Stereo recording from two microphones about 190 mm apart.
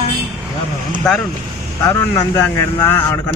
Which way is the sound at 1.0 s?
5° left (ahead or behind).